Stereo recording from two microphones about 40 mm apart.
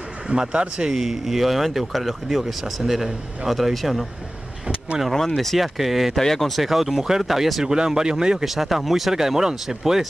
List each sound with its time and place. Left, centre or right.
0.3 s speech: right
0.9 s speech: centre
5.4 s speech: centre
6.1 s speech: centre
7.6 s speech: centre
8.5 s speech: centre